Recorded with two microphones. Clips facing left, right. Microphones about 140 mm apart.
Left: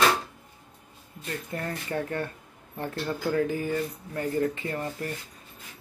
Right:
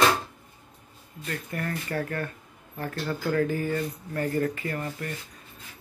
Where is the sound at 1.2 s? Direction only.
20° left (ahead or behind).